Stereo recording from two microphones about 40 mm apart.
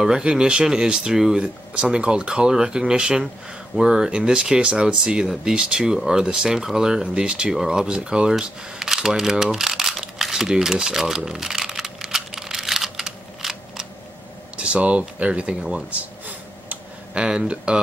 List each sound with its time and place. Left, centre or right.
0.0 s speech: centre
7.5 s speech: centre
7.9 s speech: right
8.9 s a sound: centre
14.6 s speech: right
16.0 s a sound: right
17.1 s speech: right